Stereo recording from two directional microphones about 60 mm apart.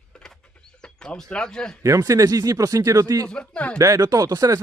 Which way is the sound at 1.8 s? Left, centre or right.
Right.